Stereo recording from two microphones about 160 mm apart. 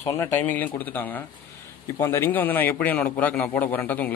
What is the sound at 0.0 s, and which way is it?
A man's voice, 15° left (ahead or behind).